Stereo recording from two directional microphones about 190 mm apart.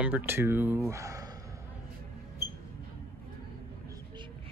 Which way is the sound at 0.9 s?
15° right (ahead or behind).